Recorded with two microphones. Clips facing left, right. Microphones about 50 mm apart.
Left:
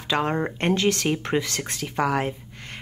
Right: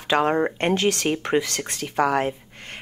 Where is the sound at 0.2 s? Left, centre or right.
Centre.